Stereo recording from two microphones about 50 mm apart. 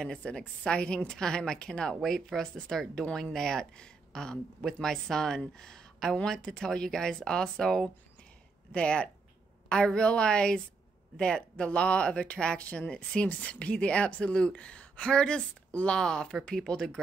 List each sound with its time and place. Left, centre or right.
0.0 s a woman's voice: centre
2.0 s a woman's voice: centre
8.7 s a woman's voice: centre